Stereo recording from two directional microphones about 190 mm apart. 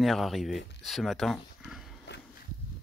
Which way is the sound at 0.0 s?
Centre (ahead or behind).